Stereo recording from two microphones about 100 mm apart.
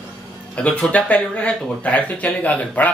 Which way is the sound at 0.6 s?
10° left (ahead or behind).